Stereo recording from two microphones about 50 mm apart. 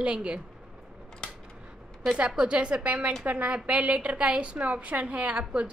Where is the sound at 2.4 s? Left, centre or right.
Right.